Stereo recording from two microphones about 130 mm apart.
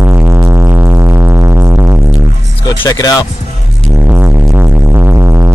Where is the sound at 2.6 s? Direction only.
30° left (ahead or behind).